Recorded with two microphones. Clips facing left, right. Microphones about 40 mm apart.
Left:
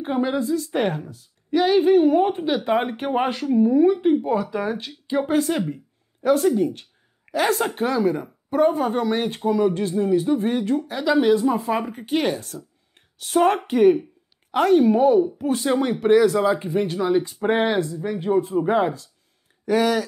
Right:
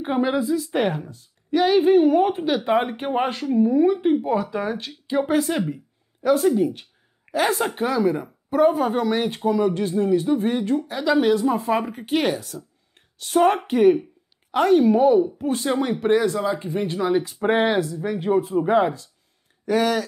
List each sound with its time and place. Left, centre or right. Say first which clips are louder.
0.0 s speech: right 1 dB; centre
0.6 s speech: right 1 dB; centre
1.9 s speech: even; centre
3.0 s speech: left 1 dB; centre
9.1 s speech: even; centre
12.9 s a sound: even; centre
13.7 s speech: even; centre
15.0 s speech: even; centre
15.2 s speech: left 1 dB; centre
16.3 s speech: left 4 dB; centre
16.8 s speech: right 2 dB; centre
17.7 s speech: even; centre
18.4 s speech: right 2 dB; centre